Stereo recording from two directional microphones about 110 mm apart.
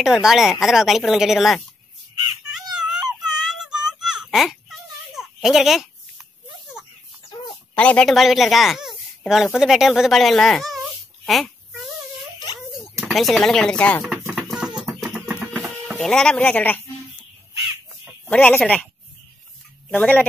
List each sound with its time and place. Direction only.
0.0 s speech: 5° right (ahead or behind)
2.5 s a sound: 5° right (ahead or behind)
7.7 s speech: 10° left (ahead or behind)
8.1 s speech: centre (ahead or behind)
12.5 s cat: 5° right (ahead or behind)
14.3 s music: 5° right (ahead or behind)
15.2 s music: 15° right (ahead or behind)
16.0 s speech: 5° left (ahead or behind)
18.3 s speech: 15° left (ahead or behind)
20.0 s speech: 15° left (ahead or behind)